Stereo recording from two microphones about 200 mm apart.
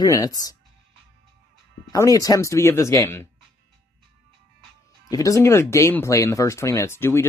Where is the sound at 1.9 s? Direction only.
15° left (ahead or behind).